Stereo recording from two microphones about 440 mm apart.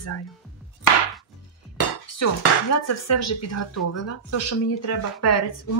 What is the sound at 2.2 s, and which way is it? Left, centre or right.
Speech, left.